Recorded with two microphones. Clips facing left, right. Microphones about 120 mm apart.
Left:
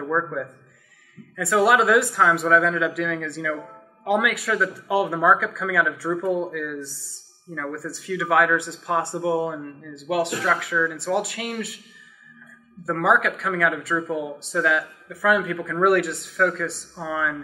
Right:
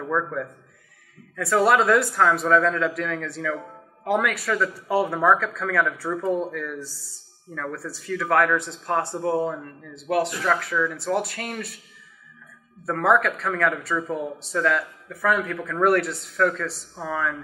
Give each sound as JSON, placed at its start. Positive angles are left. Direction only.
{"t": 0.0, "sound": "speech", "side_deg": 0}
{"t": 12.8, "sound": "speech", "side_deg": 0}